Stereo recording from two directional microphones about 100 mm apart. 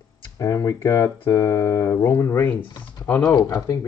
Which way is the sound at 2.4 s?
15° left (ahead or behind).